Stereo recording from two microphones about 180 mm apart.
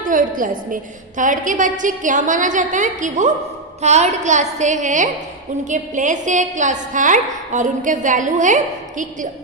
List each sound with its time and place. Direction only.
0.0 s a woman's voice: 50° right (ahead or behind)